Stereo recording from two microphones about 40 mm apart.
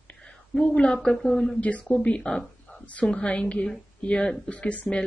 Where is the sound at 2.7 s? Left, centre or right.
Left.